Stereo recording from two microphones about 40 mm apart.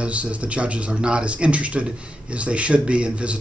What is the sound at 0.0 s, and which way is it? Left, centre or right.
Speech, right.